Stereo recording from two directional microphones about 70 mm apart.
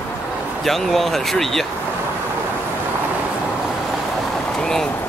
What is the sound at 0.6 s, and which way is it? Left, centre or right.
Speech, centre.